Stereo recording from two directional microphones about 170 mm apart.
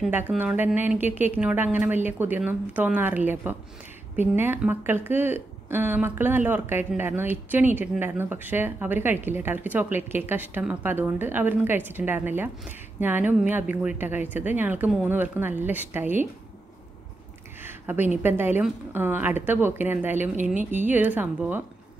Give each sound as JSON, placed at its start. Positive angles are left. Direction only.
{"t": 0.0, "sound": "speech", "side_deg": -10}
{"t": 17.6, "sound": "a sound", "side_deg": -10}
{"t": 18.2, "sound": "speech", "side_deg": -10}
{"t": 20.5, "sound": "a woman's voice", "side_deg": -45}
{"t": 20.9, "sound": "speech", "side_deg": -10}